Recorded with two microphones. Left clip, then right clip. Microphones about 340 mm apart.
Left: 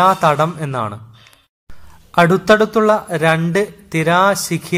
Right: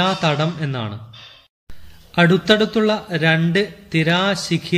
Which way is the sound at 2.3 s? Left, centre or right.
Centre.